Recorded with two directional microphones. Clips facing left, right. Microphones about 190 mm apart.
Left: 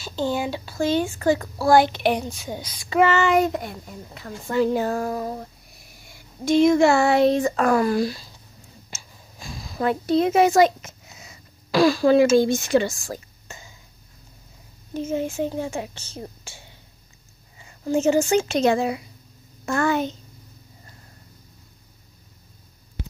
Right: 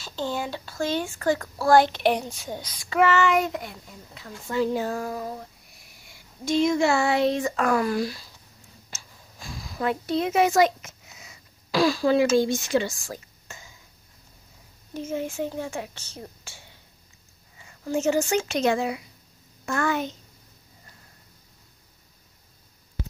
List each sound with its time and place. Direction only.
0.0 s a child's voice: 10° left (ahead or behind)
2.9 s a child's voice: 25° left (ahead or behind); by 5.2 s 50° left (ahead or behind)
6.4 s speech: 55° left (ahead or behind); by 8.3 s 30° left (ahead or behind)
9.8 s speech: 35° left (ahead or behind)
11.7 s a child's voice: 55° left (ahead or behind)
15.1 s speech: 25° left (ahead or behind)
17.6 s a child's voice: 25° left (ahead or behind)